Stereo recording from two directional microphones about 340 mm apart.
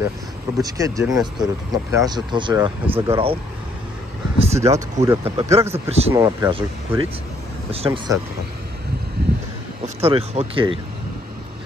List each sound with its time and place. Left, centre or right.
0.6 s speech: centre
4.4 s a sound: centre
4.6 s speech: centre
9.9 s speech: centre